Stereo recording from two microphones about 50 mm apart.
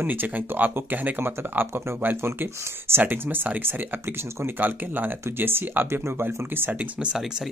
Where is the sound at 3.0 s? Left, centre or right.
Right.